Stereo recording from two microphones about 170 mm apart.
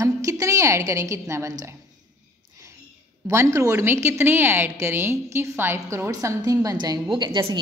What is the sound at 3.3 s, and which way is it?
A woman's voice, 15° right (ahead or behind).